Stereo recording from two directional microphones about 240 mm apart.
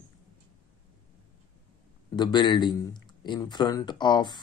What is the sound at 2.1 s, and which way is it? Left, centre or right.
Speech, centre.